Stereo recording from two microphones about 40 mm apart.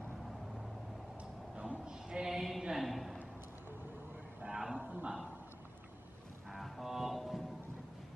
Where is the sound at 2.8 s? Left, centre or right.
Centre.